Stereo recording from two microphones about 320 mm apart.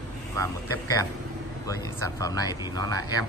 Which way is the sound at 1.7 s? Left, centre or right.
Centre.